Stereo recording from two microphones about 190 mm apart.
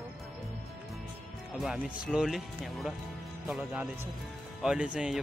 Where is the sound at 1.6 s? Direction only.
Centre (ahead or behind).